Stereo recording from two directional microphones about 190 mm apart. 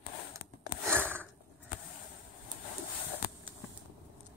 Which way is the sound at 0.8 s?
10° right (ahead or behind).